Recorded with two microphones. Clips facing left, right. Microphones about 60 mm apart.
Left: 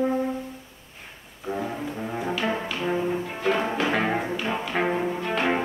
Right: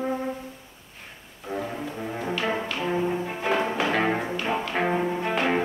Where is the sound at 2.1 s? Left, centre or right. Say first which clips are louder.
Even; centre.